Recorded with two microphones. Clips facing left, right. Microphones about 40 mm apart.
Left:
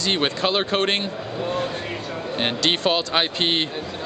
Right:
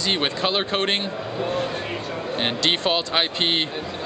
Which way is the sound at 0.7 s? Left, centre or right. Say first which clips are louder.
Left 2 dB; centre.